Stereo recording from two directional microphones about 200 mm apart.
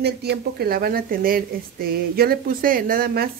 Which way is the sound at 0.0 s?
55° right (ahead or behind).